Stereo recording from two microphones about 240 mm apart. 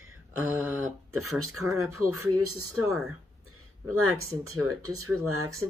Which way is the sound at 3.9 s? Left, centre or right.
Right.